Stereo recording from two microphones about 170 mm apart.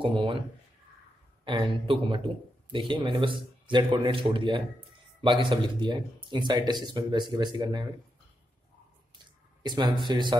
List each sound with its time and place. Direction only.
0.0 s speech: 30° right (ahead or behind)
1.4 s speech: 30° right (ahead or behind)
9.2 s a sound: 25° right (ahead or behind)